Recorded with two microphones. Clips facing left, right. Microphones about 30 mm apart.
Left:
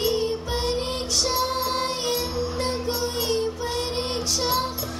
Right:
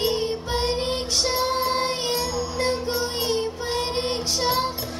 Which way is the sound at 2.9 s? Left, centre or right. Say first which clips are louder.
Right 1 dB; right.